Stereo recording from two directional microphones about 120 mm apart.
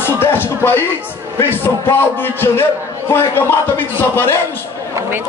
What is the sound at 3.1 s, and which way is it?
Speech, 20° left (ahead or behind).